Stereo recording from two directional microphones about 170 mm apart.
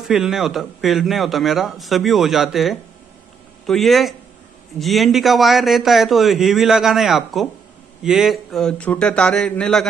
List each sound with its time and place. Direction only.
0.1 s a man's voice: 5° right (ahead or behind)